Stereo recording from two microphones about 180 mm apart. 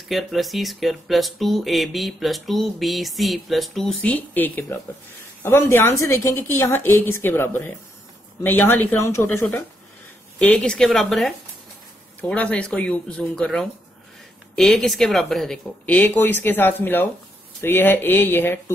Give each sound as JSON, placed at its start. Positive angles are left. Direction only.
{"t": 0.1, "sound": "speech", "side_deg": 0}